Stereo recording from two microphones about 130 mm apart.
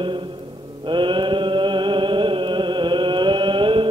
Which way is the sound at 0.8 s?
40° right (ahead or behind).